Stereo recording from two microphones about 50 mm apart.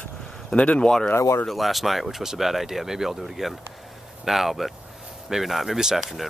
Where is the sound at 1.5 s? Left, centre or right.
Centre.